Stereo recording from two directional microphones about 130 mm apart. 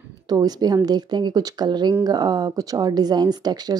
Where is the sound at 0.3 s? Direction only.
30° right (ahead or behind).